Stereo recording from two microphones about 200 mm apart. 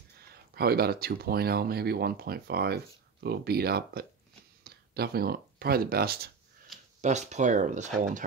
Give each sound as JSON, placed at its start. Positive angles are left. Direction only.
{"t": 0.3, "sound": "speech", "side_deg": -50}
{"t": 7.0, "sound": "speech", "side_deg": -35}